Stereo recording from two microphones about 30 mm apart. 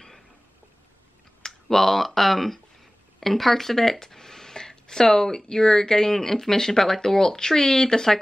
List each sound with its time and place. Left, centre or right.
1.4 s speech: centre